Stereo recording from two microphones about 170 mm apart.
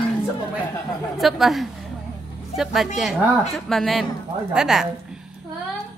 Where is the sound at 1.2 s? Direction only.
Centre (ahead or behind).